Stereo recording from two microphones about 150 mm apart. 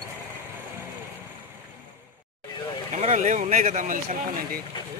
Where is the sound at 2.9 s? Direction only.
50° right (ahead or behind).